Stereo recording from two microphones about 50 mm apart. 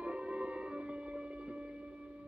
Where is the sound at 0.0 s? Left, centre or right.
Right.